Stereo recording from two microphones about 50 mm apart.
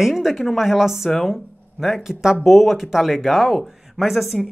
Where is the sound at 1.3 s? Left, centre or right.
Centre.